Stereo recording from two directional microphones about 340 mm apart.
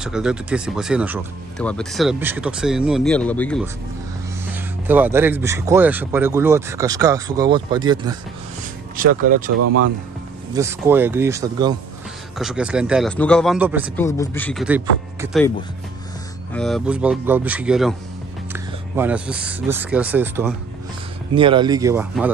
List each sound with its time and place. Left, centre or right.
0.0 s speech: centre
4.8 s speech: centre
8.9 s speech: right
10.5 s speech: centre
13.9 s speech: centre
16.5 s speech: centre